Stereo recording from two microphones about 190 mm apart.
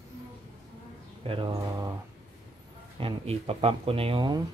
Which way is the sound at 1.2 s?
25° right (ahead or behind).